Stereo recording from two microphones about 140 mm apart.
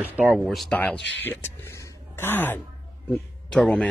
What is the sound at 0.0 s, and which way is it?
Speech, 10° right (ahead or behind).